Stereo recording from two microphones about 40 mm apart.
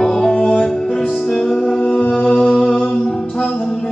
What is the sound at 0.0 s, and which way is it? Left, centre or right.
Music, centre.